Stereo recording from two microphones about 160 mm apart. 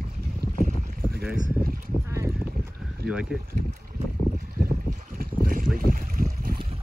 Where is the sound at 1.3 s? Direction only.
60° right (ahead or behind).